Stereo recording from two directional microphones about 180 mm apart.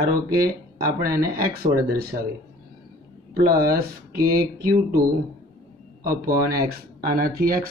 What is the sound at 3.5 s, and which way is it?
Speech, 55° right (ahead or behind).